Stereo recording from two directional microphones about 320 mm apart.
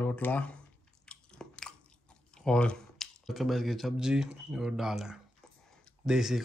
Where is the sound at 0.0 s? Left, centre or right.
Centre.